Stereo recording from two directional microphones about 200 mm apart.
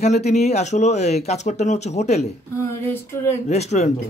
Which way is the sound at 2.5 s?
10° left (ahead or behind).